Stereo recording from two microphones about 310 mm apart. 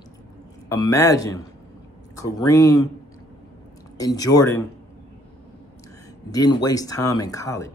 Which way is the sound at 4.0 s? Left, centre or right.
Centre.